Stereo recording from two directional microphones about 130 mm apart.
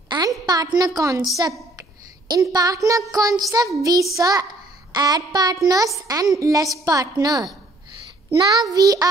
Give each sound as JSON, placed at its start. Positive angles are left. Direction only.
{"t": 0.1, "sound": "a sound", "side_deg": -35}
{"t": 0.5, "sound": "speech", "side_deg": -30}
{"t": 2.2, "sound": "speech", "side_deg": -30}